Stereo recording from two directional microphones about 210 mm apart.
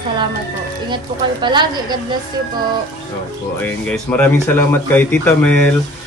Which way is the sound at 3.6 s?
10° left (ahead or behind).